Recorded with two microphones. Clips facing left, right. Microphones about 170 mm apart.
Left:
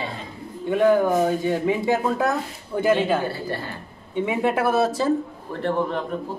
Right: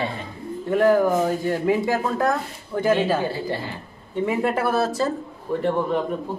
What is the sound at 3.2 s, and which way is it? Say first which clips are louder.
Speech: right 2 dB; 15° right (ahead or behind).